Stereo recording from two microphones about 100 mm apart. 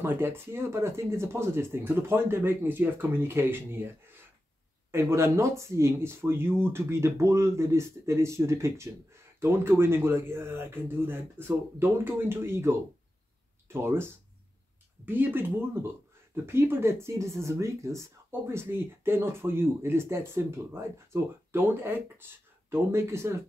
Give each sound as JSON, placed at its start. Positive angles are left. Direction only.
{"t": 0.0, "sound": "speech", "side_deg": -20}